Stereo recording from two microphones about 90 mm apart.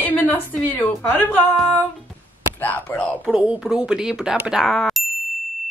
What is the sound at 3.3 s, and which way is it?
Speech, 15° right (ahead or behind).